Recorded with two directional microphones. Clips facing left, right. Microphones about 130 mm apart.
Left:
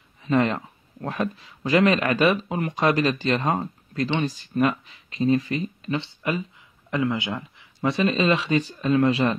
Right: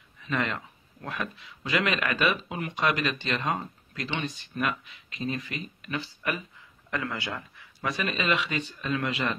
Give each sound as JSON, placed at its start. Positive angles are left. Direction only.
{"t": 0.2, "sound": "speech", "side_deg": 35}